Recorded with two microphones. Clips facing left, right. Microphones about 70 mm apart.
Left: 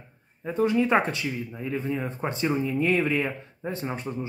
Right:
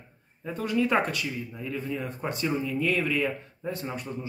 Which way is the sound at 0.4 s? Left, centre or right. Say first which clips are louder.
Left 4 dB; left.